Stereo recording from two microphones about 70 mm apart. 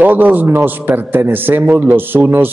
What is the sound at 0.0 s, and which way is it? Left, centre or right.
Speech, right.